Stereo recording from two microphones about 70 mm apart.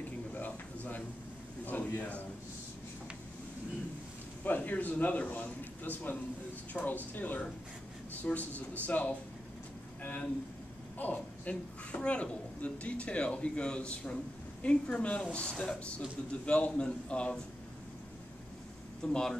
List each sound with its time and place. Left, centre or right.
0.3 s a sound: left
1.7 s a man's voice: left
4.4 s a man's voice: left
19.0 s a woman's voice: centre